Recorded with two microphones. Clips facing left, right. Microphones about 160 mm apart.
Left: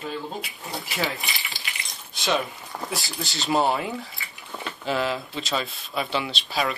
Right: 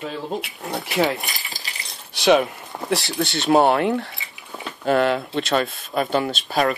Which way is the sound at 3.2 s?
60° right (ahead or behind).